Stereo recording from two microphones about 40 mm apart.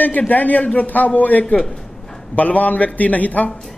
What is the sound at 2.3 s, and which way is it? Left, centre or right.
A man's voice, left.